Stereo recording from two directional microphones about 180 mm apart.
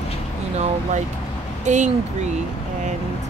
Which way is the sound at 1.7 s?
40° right (ahead or behind).